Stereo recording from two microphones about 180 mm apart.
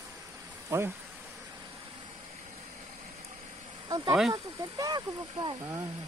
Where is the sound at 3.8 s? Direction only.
25° right (ahead or behind).